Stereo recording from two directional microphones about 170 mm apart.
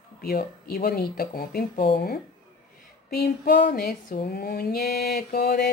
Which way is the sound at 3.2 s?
75° left (ahead or behind).